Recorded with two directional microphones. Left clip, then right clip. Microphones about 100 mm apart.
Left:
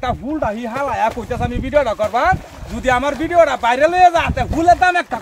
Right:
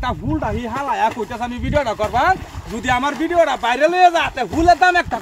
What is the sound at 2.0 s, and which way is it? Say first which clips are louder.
A man's voice: left 1 dB; 25° left (ahead or behind).